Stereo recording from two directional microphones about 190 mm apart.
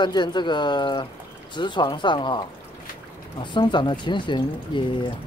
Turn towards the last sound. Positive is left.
turn(degrees=25)  # may be behind; listen again after turning